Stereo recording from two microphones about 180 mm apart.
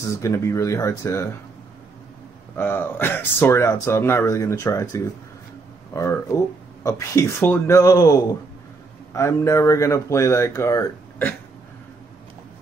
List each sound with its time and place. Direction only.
0.1 s speech: 15° left (ahead or behind)
2.5 s a man's voice: 10° left (ahead or behind)